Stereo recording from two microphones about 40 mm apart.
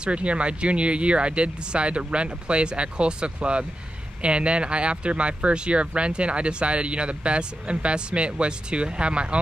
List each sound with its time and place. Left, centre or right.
0.0 s speech: right